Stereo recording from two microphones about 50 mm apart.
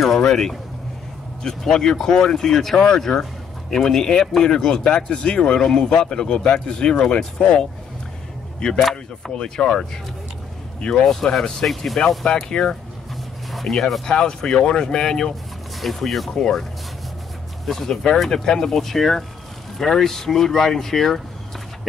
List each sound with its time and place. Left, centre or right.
0.3 s speech: centre
11.1 s speech: centre
12.3 s speech: centre
13.5 s a sound: centre
13.7 s speech: centre
14.0 s speech: centre
15.8 s speech: centre
17.6 s speech: centre